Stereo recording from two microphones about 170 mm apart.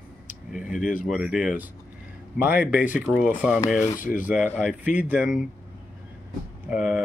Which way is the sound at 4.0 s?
50° left (ahead or behind).